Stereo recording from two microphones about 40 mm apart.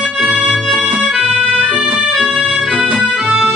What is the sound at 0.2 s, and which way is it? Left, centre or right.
Music, right.